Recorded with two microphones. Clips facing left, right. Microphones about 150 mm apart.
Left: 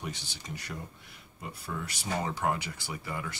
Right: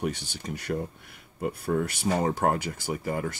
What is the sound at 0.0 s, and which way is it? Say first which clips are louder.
Speech: right 9 dB; 50° right (ahead or behind).